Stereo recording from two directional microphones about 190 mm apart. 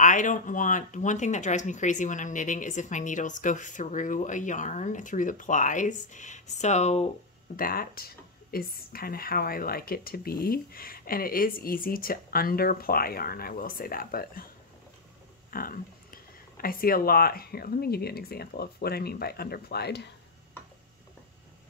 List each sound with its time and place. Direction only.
0.0 s speech: 40° left (ahead or behind)
7.5 s a woman's voice: 50° left (ahead or behind)
15.5 s a woman's voice: 50° left (ahead or behind)